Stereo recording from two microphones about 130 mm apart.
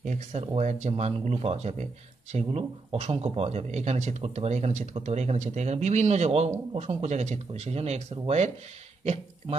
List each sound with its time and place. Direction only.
0.0 s speech: 65° right (ahead or behind)